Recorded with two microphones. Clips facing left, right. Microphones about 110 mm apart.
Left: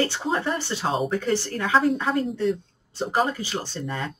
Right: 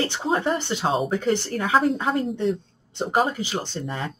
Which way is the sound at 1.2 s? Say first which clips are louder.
Right 2 dB; 20° right (ahead or behind).